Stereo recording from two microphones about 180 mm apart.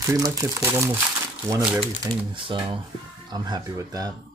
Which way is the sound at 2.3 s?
30° right (ahead or behind).